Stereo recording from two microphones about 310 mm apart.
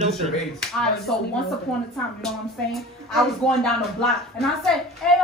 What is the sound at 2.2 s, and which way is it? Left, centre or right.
Speech, centre.